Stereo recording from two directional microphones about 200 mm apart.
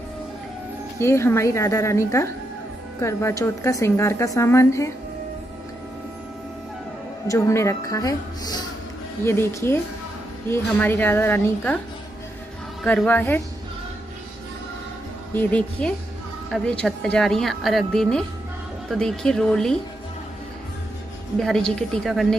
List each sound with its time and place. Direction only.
0.9 s a woman's voice: 15° left (ahead or behind)
7.2 s a woman's voice: 15° left (ahead or behind)
12.8 s a woman's voice: 10° left (ahead or behind)
15.3 s a woman's voice: 5° left (ahead or behind)
21.4 s a woman's voice: 5° left (ahead or behind)